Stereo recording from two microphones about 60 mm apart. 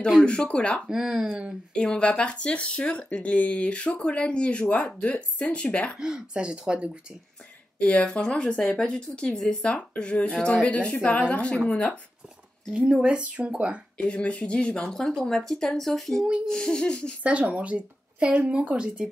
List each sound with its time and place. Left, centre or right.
0.2 s speech: centre
0.8 s speech: centre
1.7 s speech: centre
5.9 s speech: centre
7.8 s speech: centre
12.7 s a woman's voice: centre
13.9 s speech: centre
17.2 s a woman's voice: right